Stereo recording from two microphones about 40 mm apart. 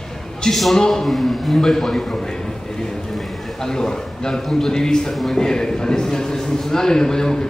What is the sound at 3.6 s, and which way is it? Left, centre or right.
A man's voice, centre.